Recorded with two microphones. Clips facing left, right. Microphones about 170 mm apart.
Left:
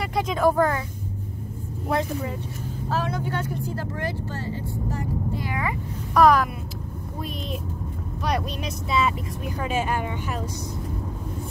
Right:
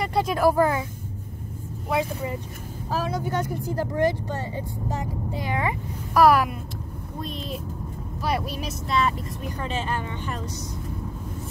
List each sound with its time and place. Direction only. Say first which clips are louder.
0.3 s speech: even; 5° right (ahead or behind)
1.9 s speech: even; 5° right (ahead or behind); by 5.8 s 25° right (ahead or behind)
6.1 s speech: even; 5° right (ahead or behind)
8.2 s speech: even; 5° right (ahead or behind)